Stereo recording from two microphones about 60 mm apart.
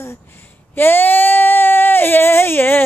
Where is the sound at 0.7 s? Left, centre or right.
Left.